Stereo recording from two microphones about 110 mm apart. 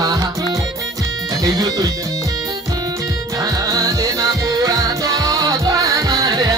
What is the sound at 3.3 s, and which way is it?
Music, 35° right (ahead or behind).